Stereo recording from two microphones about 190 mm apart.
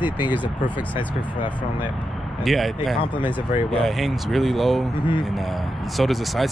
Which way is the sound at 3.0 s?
25° left (ahead or behind).